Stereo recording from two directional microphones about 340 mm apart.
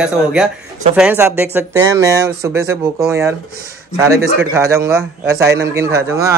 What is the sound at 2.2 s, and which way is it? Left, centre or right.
Speech, right.